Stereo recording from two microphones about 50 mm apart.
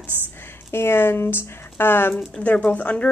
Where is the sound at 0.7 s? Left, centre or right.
Left.